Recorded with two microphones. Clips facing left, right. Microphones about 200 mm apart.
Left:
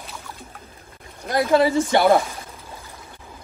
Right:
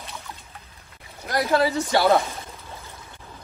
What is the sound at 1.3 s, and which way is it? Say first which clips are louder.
Speech: left 4 dB; 25° left (ahead or behind).